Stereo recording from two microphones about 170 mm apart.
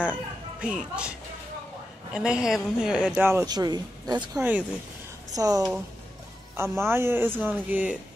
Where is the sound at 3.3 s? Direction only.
20° right (ahead or behind).